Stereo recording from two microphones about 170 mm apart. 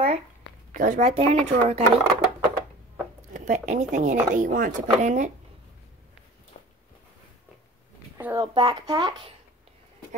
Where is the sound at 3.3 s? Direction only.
45° right (ahead or behind).